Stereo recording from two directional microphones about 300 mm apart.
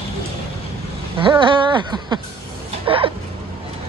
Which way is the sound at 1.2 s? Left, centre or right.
Centre.